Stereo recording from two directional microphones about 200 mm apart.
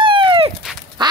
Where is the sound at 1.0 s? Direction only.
20° right (ahead or behind).